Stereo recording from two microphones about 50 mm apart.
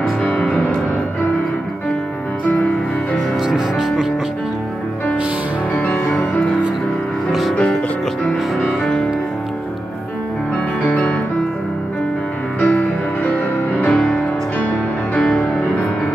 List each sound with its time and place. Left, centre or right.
0.2 s music: left
3.4 s music: centre
8.5 s music: centre
12.5 s music: left
13.9 s music: centre